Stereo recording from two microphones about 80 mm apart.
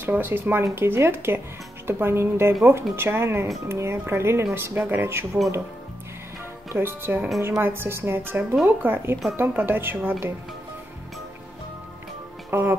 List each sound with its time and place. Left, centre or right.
0.1 s speech: right
6.7 s speech: right
12.4 s music: right